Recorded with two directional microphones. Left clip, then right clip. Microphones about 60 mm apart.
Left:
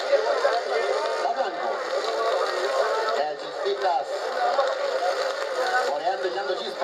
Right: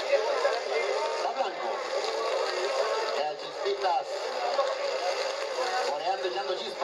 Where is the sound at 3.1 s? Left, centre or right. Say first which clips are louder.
Left 4 dB; left.